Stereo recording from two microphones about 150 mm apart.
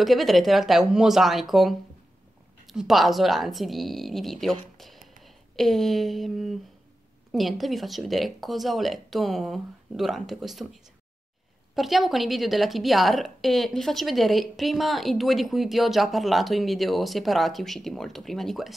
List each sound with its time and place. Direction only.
0.0 s a woman's voice: centre (ahead or behind)